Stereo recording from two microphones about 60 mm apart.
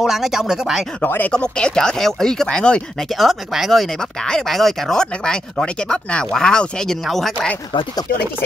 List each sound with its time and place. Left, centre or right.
0.0 s speech: centre
1.0 s speech: left
1.3 s speech: centre
3.2 s speech: centre